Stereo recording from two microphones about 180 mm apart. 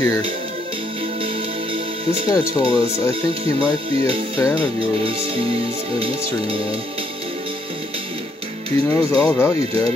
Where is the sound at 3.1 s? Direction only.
30° right (ahead or behind).